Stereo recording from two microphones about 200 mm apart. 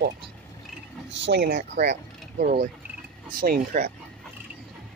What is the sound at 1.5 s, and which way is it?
Speech, 40° right (ahead or behind).